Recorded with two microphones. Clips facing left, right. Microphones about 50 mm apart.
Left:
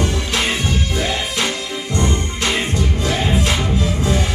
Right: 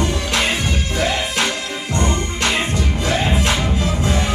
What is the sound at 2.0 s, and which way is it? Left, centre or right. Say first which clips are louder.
Music: right 1 dB; right.